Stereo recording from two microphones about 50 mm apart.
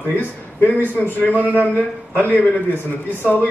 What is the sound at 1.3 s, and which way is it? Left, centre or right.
Speech, right.